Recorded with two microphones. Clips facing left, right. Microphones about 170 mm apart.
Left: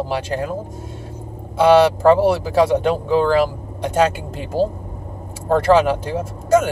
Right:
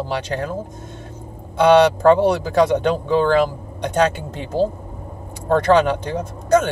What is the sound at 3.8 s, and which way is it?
A man's voice, 5° left (ahead or behind).